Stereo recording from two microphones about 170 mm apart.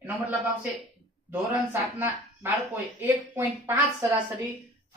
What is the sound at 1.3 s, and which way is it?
A woman's voice, 10° right (ahead or behind).